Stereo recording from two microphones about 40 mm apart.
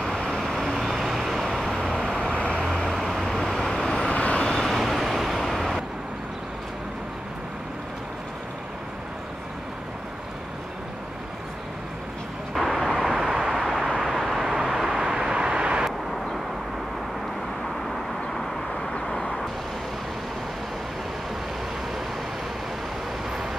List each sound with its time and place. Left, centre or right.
0.2 s vehicle: centre
2.0 s vehicle: centre
2.9 s vehicle: centre
4.0 s vehicle: left
4.4 s vehicle: centre
4.6 s vehicle: centre
12.5 s vehicle: centre
13.1 s vehicle: centre